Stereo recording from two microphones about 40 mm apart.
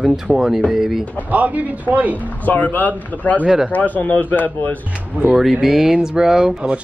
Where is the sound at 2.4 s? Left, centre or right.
Left.